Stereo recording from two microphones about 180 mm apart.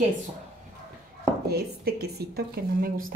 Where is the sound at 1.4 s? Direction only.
60° right (ahead or behind).